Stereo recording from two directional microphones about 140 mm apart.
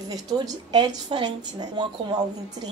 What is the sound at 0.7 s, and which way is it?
A woman's voice, 30° right (ahead or behind).